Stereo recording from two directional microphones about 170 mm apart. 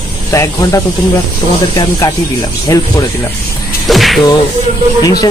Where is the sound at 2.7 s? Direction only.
15° left (ahead or behind).